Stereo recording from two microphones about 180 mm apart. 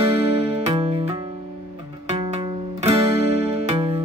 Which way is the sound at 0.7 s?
30° right (ahead or behind).